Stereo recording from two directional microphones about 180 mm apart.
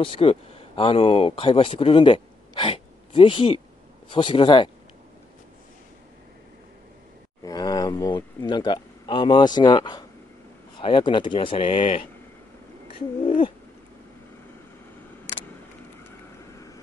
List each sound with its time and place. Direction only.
0.0 s speech: 30° left (ahead or behind)
7.4 s speech: 20° left (ahead or behind)
13.2 s owl: 30° left (ahead or behind)
16.5 s vehicle: 20° left (ahead or behind)